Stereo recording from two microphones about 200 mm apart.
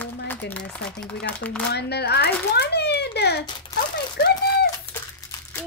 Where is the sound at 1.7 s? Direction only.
55° left (ahead or behind).